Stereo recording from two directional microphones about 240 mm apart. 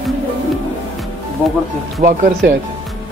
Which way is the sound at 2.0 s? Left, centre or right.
Right.